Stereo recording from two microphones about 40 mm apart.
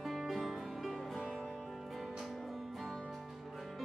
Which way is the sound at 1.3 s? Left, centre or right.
Centre.